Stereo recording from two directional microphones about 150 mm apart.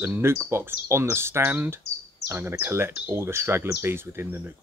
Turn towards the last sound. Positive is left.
turn(degrees=-15)  # may be behind; listen again after turning